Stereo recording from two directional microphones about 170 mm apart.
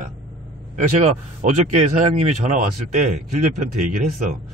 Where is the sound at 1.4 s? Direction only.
45° right (ahead or behind).